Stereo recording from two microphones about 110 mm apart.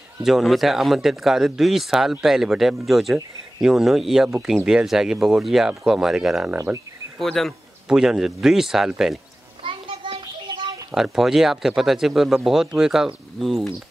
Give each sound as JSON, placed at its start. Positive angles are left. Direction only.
{"t": 0.2, "sound": "speech", "side_deg": -5}
{"t": 6.5, "sound": "speech", "side_deg": -25}
{"t": 7.2, "sound": "speech", "side_deg": 5}
{"t": 9.6, "sound": "a sound", "side_deg": -50}
{"t": 10.2, "sound": "a sound", "side_deg": -40}
{"t": 10.9, "sound": "speech", "side_deg": -5}